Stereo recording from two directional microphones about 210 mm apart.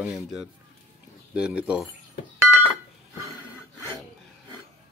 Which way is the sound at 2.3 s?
15° left (ahead or behind).